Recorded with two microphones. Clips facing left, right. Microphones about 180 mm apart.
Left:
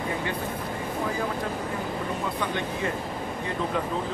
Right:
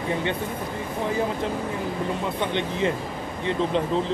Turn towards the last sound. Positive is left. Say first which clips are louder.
# right 4 dB
turn(degrees=-25)  # may be behind; listen again after turning